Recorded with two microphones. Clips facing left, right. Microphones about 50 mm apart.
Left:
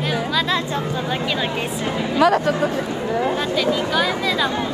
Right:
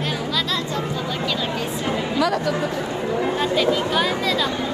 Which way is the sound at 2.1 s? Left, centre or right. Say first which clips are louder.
Left 6 dB; left.